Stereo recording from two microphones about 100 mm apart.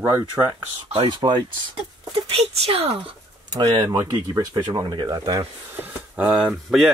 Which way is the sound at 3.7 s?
35° right (ahead or behind).